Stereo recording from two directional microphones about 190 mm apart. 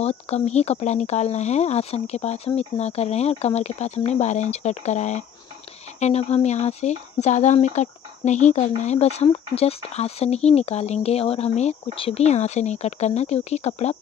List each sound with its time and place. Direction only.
0.0 s speech: 35° left (ahead or behind)